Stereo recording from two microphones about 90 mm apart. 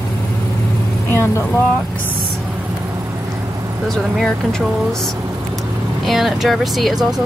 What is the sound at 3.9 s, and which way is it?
Speech, 5° left (ahead or behind).